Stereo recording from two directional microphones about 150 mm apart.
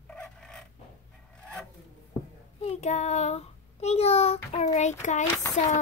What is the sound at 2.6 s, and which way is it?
A child's voice, 50° left (ahead or behind).